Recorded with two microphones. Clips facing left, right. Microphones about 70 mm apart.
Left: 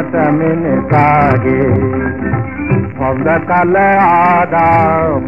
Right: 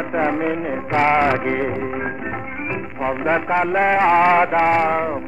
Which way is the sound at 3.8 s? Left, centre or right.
Left.